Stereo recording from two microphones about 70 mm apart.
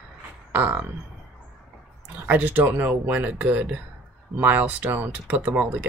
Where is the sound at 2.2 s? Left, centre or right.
Right.